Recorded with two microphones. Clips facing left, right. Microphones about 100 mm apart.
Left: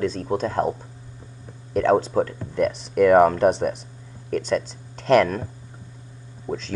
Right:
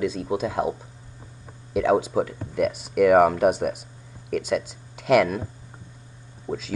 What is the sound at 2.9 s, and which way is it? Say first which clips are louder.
Speech: left 2 dB; 35° left (ahead or behind).